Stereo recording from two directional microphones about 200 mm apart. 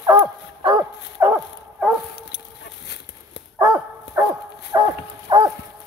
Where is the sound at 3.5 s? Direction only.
10° right (ahead or behind).